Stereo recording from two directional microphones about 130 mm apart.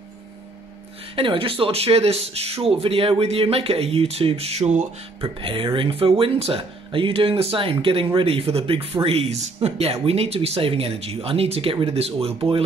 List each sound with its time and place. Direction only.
1.1 s speech: 45° right (ahead or behind); by 5.3 s 60° right (ahead or behind)
5.4 s speech: 40° right (ahead or behind)